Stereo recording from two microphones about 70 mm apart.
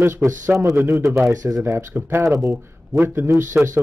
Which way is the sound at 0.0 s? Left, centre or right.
Right.